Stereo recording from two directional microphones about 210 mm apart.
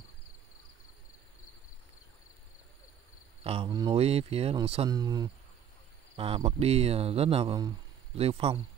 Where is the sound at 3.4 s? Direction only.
25° right (ahead or behind).